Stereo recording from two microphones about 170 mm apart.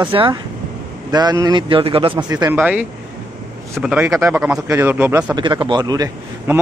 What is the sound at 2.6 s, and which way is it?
A man's voice, 10° right (ahead or behind).